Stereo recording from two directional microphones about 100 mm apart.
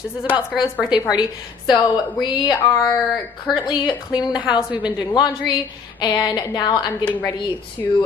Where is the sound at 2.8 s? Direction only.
35° left (ahead or behind).